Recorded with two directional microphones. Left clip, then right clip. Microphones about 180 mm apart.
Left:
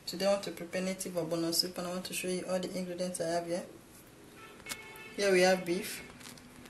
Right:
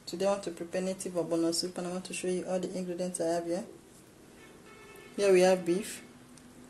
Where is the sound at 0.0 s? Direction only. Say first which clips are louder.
Even; 45° right (ahead or behind).